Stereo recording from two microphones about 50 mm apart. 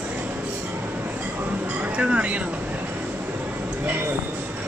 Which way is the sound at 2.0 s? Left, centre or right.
Right.